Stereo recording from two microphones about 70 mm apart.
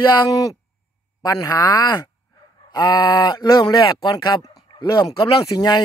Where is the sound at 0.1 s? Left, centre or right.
Left.